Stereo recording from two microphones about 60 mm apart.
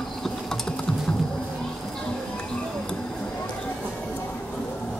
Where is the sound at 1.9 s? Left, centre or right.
Centre.